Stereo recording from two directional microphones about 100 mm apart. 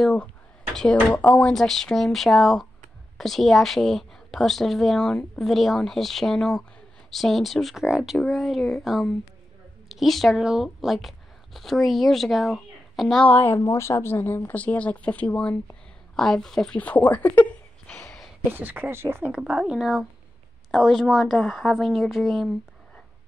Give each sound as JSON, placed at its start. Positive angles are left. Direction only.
{"t": 0.0, "sound": "speech", "side_deg": 10}
{"t": 1.5, "sound": "a woman's voice", "side_deg": 5}
{"t": 13.2, "sound": "speech", "side_deg": 20}
{"t": 13.6, "sound": "speech", "side_deg": 30}
{"t": 18.5, "sound": "speech", "side_deg": -20}
{"t": 19.3, "sound": "a woman's voice", "side_deg": -10}